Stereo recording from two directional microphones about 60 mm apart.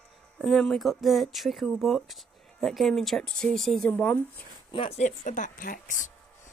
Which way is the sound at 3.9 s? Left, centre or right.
Left.